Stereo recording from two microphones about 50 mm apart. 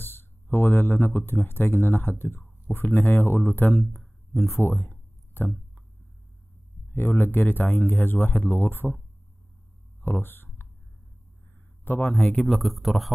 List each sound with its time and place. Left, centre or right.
0.0 s speech: left
3.7 s speech: centre
4.6 s speech: left
6.9 s speech: left
10.0 s speech: left
12.1 s speech: centre
12.4 s speech: centre